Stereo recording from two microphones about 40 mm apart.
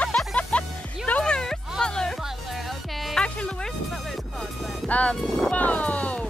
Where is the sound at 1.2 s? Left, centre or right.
Centre.